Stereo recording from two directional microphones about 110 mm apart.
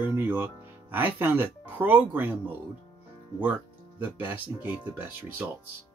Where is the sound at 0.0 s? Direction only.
20° right (ahead or behind).